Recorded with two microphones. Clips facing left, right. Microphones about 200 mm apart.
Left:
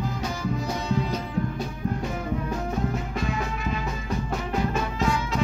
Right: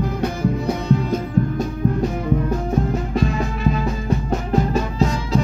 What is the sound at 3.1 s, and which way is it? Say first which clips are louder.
Music: right 7 dB; 35° right (ahead or behind).